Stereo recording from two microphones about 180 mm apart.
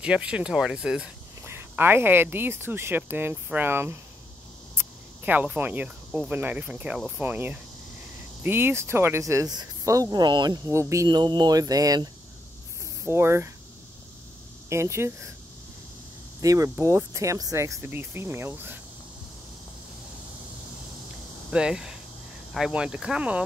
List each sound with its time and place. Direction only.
0.0 s speech: 5° right (ahead or behind)
14.7 s speech: 15° right (ahead or behind)
16.3 s speech: 15° right (ahead or behind)
21.5 s speech: 5° right (ahead or behind)